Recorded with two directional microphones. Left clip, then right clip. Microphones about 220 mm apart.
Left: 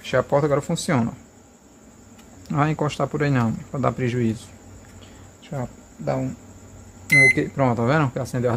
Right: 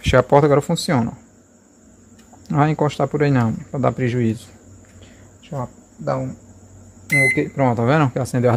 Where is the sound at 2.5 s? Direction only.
20° right (ahead or behind).